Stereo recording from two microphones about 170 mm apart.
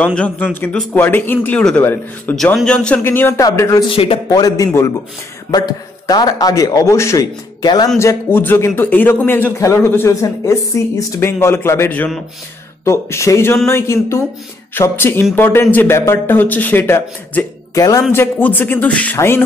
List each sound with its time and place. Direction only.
0.0 s a man's voice: 5° left (ahead or behind)
3.9 s a man's voice: 35° left (ahead or behind)
4.3 s a man's voice: 20° left (ahead or behind)